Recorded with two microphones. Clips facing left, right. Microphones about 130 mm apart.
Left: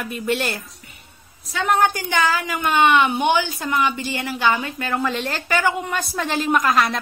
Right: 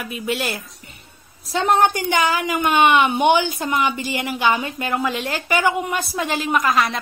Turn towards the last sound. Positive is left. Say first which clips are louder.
# even
turn(degrees=0)  # may be behind; listen again after turning